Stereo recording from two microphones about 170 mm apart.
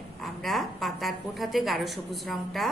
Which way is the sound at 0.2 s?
Centre (ahead or behind).